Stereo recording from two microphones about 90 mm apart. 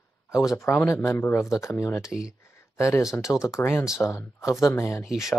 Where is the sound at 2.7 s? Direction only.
35° left (ahead or behind).